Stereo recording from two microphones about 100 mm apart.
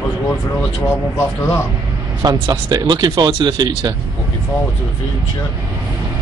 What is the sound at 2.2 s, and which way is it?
Speech, 40° right (ahead or behind).